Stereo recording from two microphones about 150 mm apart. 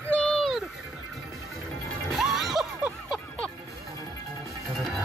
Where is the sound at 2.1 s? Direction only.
Centre (ahead or behind).